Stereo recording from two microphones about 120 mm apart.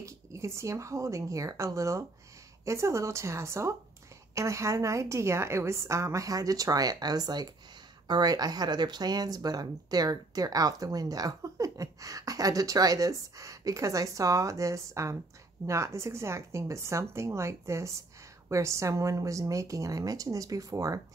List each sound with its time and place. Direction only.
0.0 s a woman's voice: 25° right (ahead or behind)